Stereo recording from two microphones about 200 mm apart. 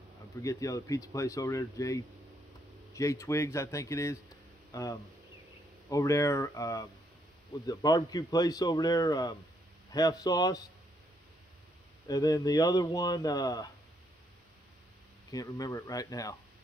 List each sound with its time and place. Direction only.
0.4 s speech: 15° left (ahead or behind)
12.1 s speech: 20° left (ahead or behind)
15.3 s speech: 15° left (ahead or behind)